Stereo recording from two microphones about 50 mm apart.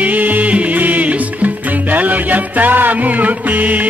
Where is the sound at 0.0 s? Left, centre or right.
Right.